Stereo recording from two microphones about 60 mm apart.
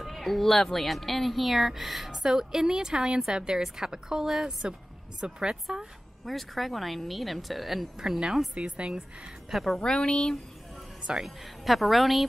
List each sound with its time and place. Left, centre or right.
0.0 s a woman's voice: centre
8.5 s a woman's voice: centre
9.5 s speech: centre
9.8 s speech: centre
11.0 s music: centre
11.2 s speech: centre